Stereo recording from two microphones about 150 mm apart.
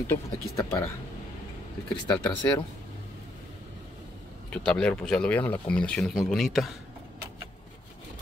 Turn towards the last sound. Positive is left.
turn(degrees=0)  # may be behind; listen again after turning